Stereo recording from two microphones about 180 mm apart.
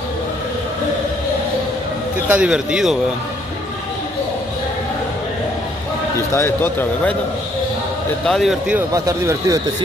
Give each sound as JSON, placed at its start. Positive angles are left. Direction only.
{"t": 2.2, "sound": "speech", "side_deg": -5}
{"t": 6.1, "sound": "speech", "side_deg": 15}
{"t": 8.3, "sound": "speech", "side_deg": 0}
{"t": 8.9, "sound": "speech", "side_deg": -15}